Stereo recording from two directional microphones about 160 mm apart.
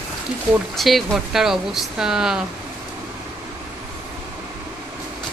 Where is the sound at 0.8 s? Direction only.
Centre (ahead or behind).